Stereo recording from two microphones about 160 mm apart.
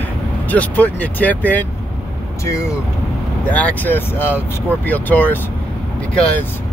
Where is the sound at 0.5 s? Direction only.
10° left (ahead or behind).